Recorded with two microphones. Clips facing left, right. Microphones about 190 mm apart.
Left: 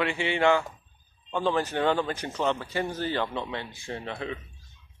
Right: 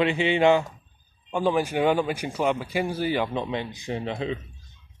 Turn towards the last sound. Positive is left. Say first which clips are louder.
# right 5 dB
turn(degrees=-20)  # may be behind; listen again after turning